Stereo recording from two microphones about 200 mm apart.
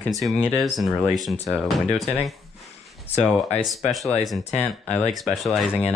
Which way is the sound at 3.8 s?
Centre (ahead or behind).